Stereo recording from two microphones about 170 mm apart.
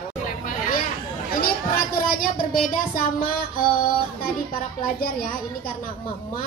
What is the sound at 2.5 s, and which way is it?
Child singing, 60° left (ahead or behind).